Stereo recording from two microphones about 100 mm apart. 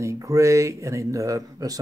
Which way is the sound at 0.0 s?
30° right (ahead or behind).